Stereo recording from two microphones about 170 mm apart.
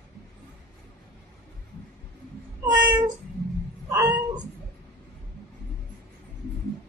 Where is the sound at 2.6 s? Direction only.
25° right (ahead or behind).